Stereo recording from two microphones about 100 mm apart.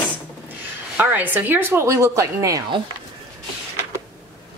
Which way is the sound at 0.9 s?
20° right (ahead or behind).